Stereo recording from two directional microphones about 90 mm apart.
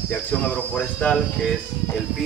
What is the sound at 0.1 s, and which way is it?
Speech, 15° left (ahead or behind).